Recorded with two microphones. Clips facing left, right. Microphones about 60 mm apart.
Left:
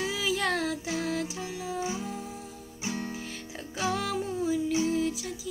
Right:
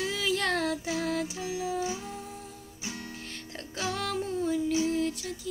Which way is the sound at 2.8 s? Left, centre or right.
Left.